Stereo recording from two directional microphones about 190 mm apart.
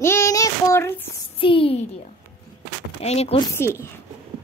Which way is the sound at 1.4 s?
30° left (ahead or behind).